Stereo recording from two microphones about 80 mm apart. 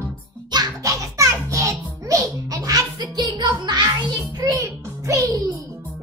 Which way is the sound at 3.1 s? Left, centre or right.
Right.